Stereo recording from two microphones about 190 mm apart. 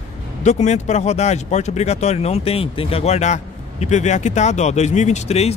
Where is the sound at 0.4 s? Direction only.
35° left (ahead or behind).